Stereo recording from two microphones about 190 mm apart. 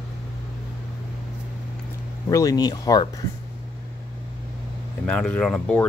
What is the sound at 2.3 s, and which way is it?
Speech, 20° left (ahead or behind).